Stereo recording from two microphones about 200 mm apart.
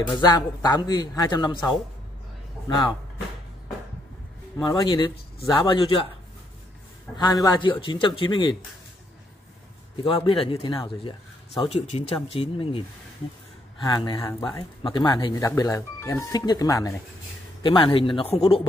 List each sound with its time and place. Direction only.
0.0 s speech: 20° left (ahead or behind)
4.6 s speech: 20° left (ahead or behind)
7.1 s a man's voice: 5° left (ahead or behind)
7.4 s speech: 20° left (ahead or behind)
10.0 s speech: 25° left (ahead or behind)
13.8 s speech: 20° left (ahead or behind)